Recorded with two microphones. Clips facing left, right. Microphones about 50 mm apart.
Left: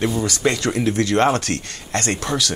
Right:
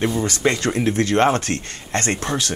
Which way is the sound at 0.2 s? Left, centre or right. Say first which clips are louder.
Even; right.